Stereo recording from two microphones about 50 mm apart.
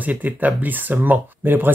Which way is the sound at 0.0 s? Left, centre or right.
Right.